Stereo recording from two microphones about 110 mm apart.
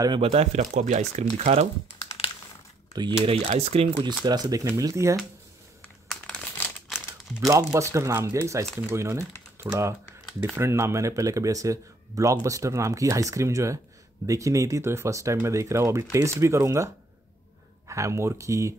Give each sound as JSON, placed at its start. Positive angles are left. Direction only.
{"t": 0.2, "sound": "speech", "side_deg": -70}
{"t": 2.0, "sound": "typing", "side_deg": 60}
{"t": 2.9, "sound": "speech", "side_deg": -40}
{"t": 3.3, "sound": "speech", "side_deg": -65}
{"t": 4.2, "sound": "speech", "side_deg": -40}
{"t": 6.0, "sound": "crumpling", "side_deg": 5}
{"t": 7.4, "sound": "speech", "side_deg": -25}